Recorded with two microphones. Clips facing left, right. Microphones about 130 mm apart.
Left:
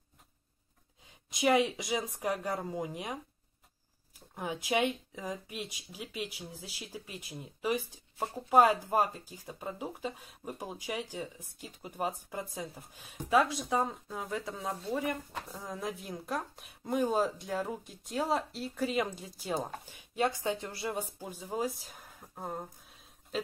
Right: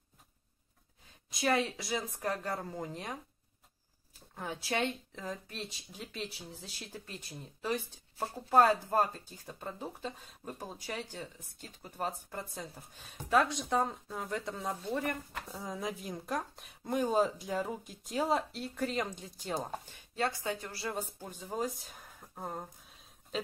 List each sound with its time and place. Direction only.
1.3 s speech: 15° left (ahead or behind)
21.2 s speech: 10° left (ahead or behind)